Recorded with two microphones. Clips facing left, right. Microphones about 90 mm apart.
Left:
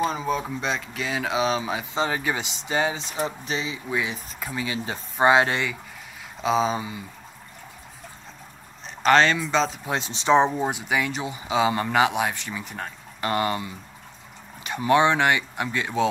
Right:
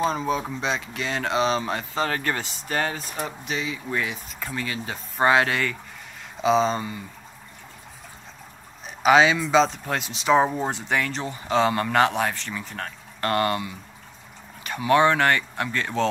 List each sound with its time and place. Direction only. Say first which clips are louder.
0.0 s speech: right 1 dB; centre (ahead or behind)
3.4 s speech: even; 30° left (ahead or behind)
3.9 s speech: left 2 dB; 5° left (ahead or behind)
5.2 s speech: left 1 dB; 20° left (ahead or behind)
6.4 s speech: right 2 dB; 5° left (ahead or behind)
8.8 s speech: right 1 dB; 5° right (ahead or behind)
9.9 s speech: left 1 dB; 30° left (ahead or behind)
10.3 s speech: left 1 dB; centre (ahead or behind)
14.9 s speech: right 1 dB; 15° left (ahead or behind)